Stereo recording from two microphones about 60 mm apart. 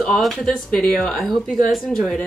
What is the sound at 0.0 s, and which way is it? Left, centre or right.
Speech, centre.